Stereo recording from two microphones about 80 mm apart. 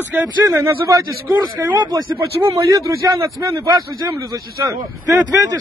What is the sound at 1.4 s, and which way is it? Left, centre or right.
Speech, right.